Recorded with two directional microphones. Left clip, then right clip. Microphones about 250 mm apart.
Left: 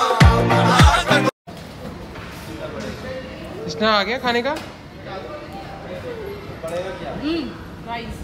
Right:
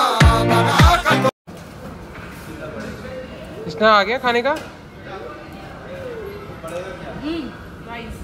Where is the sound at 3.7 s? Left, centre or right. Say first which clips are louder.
Right 4 dB; centre.